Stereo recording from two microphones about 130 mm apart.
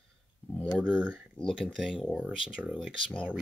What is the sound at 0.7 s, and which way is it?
Speech, 10° right (ahead or behind).